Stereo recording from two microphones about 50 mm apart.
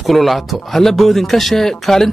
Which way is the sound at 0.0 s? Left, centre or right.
Centre.